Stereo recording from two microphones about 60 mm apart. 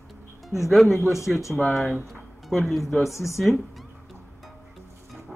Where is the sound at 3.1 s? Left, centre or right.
Left.